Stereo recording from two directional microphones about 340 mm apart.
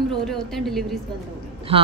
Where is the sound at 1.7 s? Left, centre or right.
Centre.